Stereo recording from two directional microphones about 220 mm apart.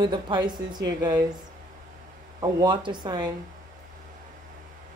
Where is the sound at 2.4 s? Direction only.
20° right (ahead or behind).